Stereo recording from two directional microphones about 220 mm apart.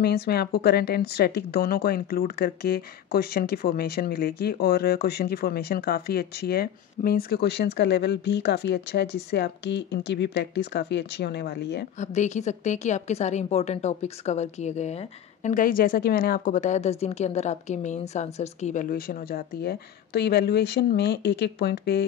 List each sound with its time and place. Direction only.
0.0 s speech: 45° left (ahead or behind)
12.0 s a woman's voice: 30° left (ahead or behind)